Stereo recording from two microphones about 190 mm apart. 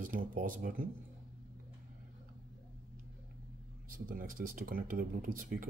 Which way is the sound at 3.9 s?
45° right (ahead or behind).